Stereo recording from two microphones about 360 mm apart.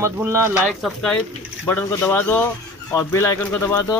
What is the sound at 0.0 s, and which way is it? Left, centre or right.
Speech, centre.